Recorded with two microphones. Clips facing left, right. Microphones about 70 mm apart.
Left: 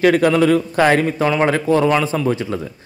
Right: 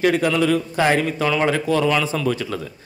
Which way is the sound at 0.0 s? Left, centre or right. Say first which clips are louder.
Left 5 dB; left.